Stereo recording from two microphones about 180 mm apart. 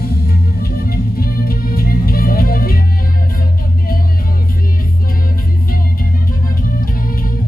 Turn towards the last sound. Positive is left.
turn(degrees=55)  # may be behind; listen again after turning